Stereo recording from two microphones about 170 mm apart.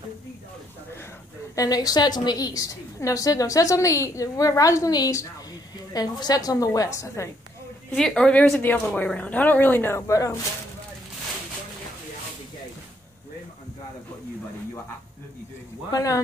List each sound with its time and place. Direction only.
1.5 s a woman's voice: 20° left (ahead or behind)
7.9 s a woman's voice: 5° left (ahead or behind); by 10.4 s 20° left (ahead or behind)
15.9 s a woman's voice: 20° left (ahead or behind)